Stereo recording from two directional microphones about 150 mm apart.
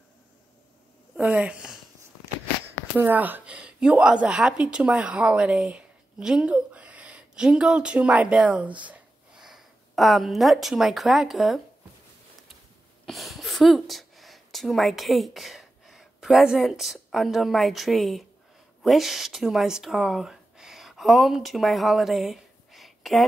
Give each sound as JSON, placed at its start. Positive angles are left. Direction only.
{"t": 1.1, "sound": "a sound", "side_deg": -10}
{"t": 3.0, "sound": "a woman's voice", "side_deg": -15}
{"t": 13.0, "sound": "speech", "side_deg": 0}